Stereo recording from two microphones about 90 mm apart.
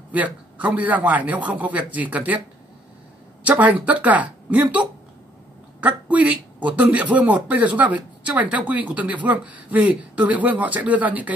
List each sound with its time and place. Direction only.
0.1 s a man's voice: 15° right (ahead or behind)
3.4 s a man's voice: 15° right (ahead or behind)